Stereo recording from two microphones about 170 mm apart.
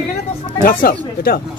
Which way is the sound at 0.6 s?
55° left (ahead or behind).